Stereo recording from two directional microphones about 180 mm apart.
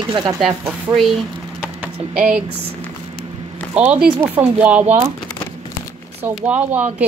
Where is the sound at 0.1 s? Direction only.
20° right (ahead or behind).